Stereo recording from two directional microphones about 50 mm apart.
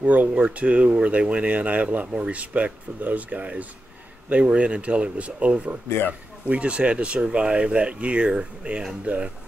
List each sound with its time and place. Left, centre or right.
0.0 s speech: right